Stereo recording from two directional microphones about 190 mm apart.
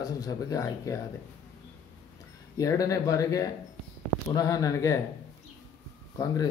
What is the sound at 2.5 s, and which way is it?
Speech, 20° left (ahead or behind).